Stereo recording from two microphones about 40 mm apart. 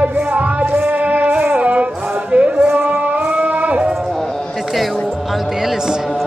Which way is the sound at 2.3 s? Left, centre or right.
Right.